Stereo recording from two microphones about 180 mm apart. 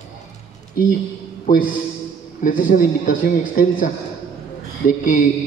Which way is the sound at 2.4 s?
45° left (ahead or behind).